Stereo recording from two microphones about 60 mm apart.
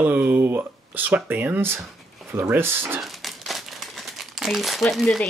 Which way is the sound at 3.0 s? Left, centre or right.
Centre.